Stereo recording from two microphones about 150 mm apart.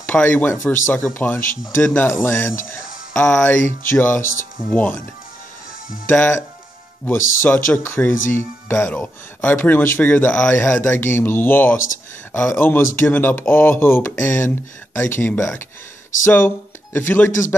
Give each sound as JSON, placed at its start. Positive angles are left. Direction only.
{"t": 0.0, "sound": "speech", "side_deg": 10}
{"t": 3.1, "sound": "speech", "side_deg": 5}
{"t": 6.0, "sound": "speech", "side_deg": 10}